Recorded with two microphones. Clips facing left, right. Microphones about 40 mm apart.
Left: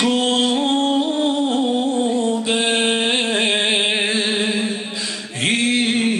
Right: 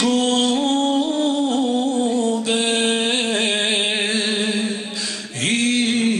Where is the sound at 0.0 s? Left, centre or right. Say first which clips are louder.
Even; left.